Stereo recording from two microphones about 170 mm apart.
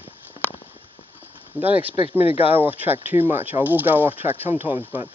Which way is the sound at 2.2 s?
35° left (ahead or behind).